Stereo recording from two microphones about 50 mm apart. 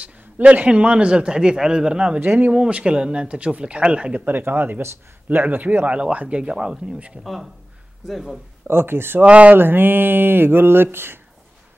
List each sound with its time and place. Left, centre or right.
0.0 s a man's voice: right
2.1 s speech: right
2.5 s a man's voice: centre
4.1 s speech: right
5.9 s a man's voice: right
8.1 s speech: centre
8.6 s speech: right
9.2 s a man's voice: right
9.6 s speech: right